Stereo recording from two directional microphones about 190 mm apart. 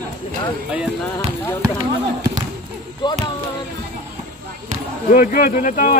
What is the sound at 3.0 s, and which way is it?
Speech, 25° left (ahead or behind).